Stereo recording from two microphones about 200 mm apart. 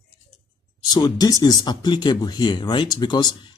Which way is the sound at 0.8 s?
20° left (ahead or behind).